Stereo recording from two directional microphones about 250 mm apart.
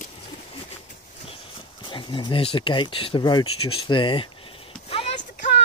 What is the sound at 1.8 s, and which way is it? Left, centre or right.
Speech, centre.